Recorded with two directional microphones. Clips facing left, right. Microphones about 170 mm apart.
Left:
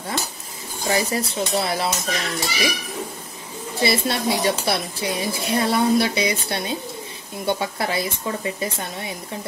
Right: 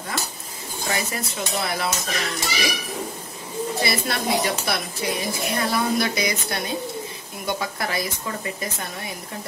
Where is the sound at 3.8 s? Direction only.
30° left (ahead or behind).